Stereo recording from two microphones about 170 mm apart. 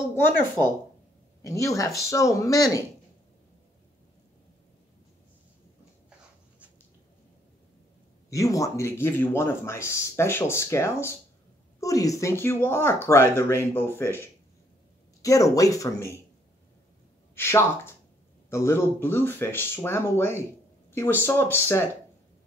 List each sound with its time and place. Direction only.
1.4 s speech: 20° left (ahead or behind)
8.3 s speech: 20° left (ahead or behind)
17.4 s speech: 15° left (ahead or behind)